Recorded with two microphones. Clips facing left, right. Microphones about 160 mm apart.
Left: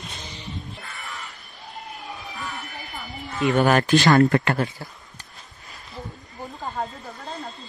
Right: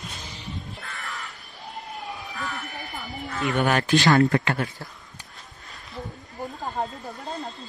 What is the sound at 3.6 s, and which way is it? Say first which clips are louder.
Speech: left 3 dB; 45° left (ahead or behind).